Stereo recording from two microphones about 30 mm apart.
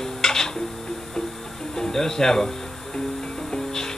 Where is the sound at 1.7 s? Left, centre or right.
Centre.